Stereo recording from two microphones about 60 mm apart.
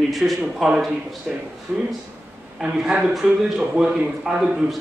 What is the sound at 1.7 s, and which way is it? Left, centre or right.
A man's voice, centre.